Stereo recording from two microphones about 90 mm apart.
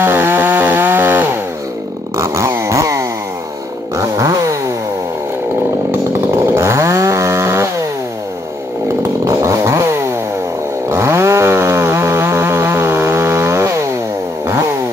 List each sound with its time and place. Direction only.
0.0 s chainsaw: 25° right (ahead or behind)
2.1 s chainsaw: 35° right (ahead or behind)
6.4 s chainsaw: 30° right (ahead or behind)
9.2 s chainsaw: 35° right (ahead or behind)